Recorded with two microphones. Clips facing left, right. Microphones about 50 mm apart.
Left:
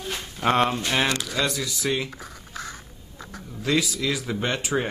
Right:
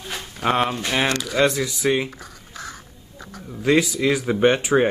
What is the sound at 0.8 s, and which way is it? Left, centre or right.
Speech, centre.